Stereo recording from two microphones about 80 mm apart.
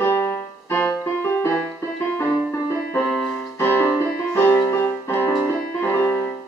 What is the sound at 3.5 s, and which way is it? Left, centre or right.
Music, left.